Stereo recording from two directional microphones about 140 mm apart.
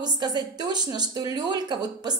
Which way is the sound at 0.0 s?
30° right (ahead or behind).